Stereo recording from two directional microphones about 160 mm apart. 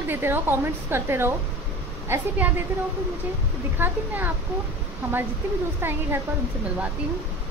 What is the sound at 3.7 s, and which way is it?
Speech, 10° right (ahead or behind).